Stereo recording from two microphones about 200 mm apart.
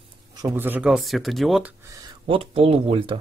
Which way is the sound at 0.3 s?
20° right (ahead or behind).